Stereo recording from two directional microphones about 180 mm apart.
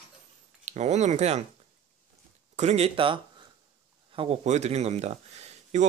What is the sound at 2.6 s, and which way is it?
Speech, 35° right (ahead or behind).